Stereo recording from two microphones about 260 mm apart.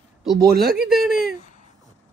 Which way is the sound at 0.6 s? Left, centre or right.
Centre.